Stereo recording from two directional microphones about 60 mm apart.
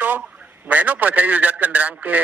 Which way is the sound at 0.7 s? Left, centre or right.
Right.